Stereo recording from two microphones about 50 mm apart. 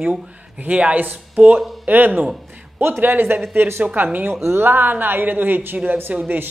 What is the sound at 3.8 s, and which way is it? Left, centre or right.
Speech, right.